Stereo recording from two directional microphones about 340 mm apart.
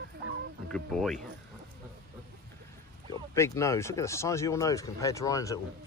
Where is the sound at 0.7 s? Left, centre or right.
Centre.